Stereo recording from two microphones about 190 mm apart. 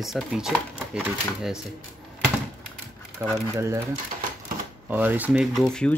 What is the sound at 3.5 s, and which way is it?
Speech, 15° right (ahead or behind).